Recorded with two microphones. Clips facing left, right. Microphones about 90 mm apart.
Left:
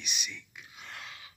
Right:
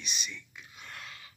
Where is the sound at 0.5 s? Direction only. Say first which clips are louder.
Even; 10° left (ahead or behind).